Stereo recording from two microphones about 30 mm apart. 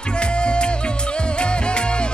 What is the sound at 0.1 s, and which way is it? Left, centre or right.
Music, left.